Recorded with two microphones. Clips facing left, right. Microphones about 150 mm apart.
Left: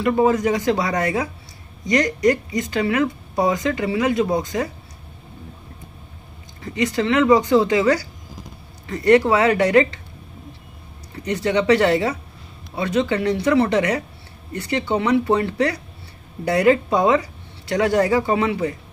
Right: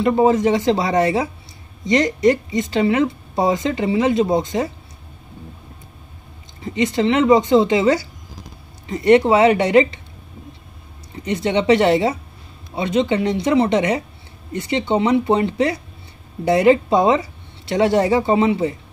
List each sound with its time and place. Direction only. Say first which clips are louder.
0.0 s speech: right 2 dB; 25° right (ahead or behind)
6.6 s speech: right 3 dB; 25° right (ahead or behind)
11.2 s speech: right 1 dB; 20° right (ahead or behind)